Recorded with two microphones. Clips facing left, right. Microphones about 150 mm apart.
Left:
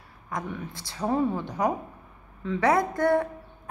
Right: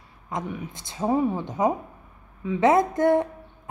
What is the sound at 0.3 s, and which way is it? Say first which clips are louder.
Speech: right 2 dB; 15° right (ahead or behind).